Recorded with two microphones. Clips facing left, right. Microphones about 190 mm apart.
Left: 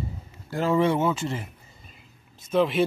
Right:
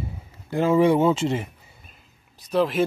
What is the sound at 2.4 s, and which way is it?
Speech, centre (ahead or behind).